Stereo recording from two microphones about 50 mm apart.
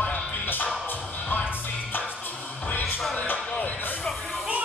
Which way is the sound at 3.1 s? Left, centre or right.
Left.